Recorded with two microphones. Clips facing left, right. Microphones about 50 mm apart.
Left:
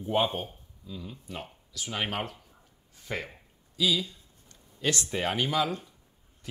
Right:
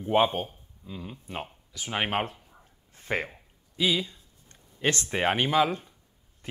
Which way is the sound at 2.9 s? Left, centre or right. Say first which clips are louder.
Right 5 dB; right.